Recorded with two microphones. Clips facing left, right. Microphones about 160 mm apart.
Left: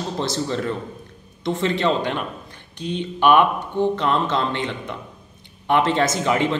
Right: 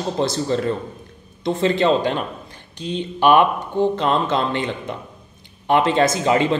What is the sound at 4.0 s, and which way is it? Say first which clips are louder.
Speech: right 2 dB; 15° right (ahead or behind).